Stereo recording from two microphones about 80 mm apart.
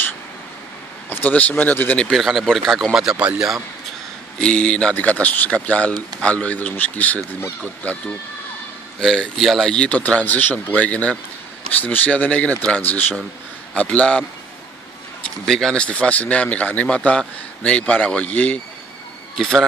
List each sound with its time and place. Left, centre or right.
1.1 s speech: left
2.1 s speech: centre
4.4 s speech: centre
9.0 s speech: centre
15.4 s speech: centre
19.3 s speech: centre